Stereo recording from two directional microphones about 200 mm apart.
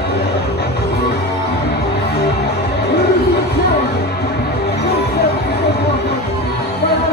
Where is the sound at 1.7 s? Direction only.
55° left (ahead or behind).